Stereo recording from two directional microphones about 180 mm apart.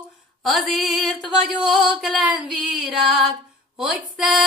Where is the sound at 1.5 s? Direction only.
Centre (ahead or behind).